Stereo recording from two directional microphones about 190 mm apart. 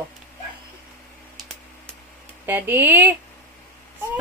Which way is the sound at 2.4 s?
10° right (ahead or behind).